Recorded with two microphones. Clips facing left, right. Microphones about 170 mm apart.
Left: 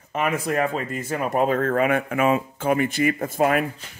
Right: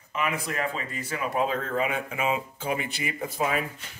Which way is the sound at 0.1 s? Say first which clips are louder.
Left 6 dB; 50° left (ahead or behind).